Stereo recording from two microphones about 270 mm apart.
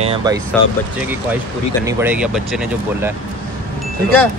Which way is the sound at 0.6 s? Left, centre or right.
Centre.